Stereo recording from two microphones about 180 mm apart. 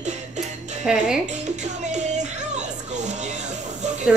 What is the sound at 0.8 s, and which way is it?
Speech, 5° right (ahead or behind).